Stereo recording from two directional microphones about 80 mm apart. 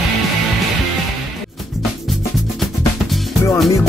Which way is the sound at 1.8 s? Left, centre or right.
Centre.